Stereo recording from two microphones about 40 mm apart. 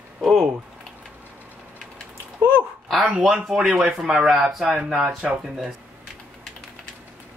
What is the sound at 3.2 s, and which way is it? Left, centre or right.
Speech, right.